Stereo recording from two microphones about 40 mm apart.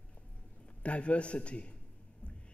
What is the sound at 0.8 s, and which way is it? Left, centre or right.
Speech, left.